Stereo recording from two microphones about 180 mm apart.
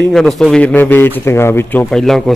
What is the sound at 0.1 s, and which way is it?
A man's voice, centre (ahead or behind).